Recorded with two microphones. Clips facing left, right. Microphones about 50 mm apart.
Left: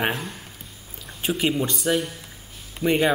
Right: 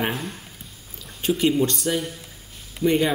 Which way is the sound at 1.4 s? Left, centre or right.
Centre.